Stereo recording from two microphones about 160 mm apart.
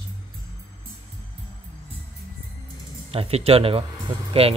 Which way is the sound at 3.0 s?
40° right (ahead or behind).